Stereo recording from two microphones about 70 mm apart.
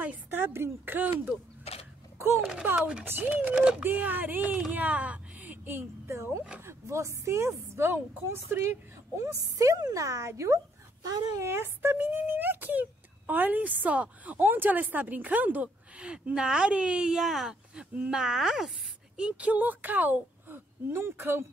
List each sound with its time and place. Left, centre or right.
0.3 s speech: right
2.1 s a sound: right
2.6 s a woman's voice: right
9.2 s a woman's voice: right; by 17.8 s centre
17.9 s a woman's voice: right
18.2 s speech: centre
19.1 s a woman's voice: centre; by 21.5 s right